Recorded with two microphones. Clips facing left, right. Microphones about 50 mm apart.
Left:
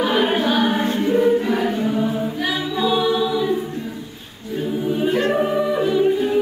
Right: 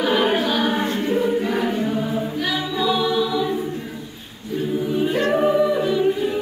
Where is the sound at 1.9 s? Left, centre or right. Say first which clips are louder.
Left 2 dB; centre.